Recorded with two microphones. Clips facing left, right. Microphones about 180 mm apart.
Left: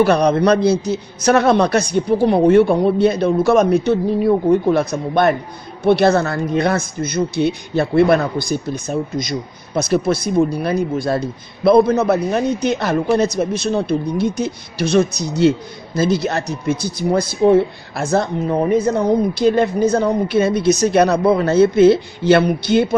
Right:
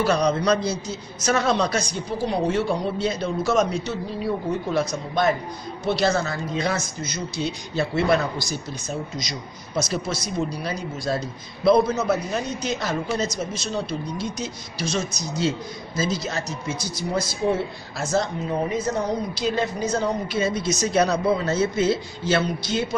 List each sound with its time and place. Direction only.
0.0 s speech: 60° left (ahead or behind)